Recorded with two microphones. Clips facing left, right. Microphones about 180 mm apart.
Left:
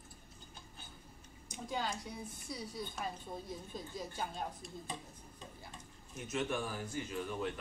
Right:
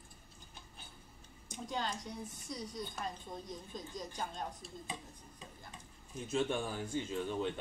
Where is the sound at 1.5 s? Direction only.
5° left (ahead or behind).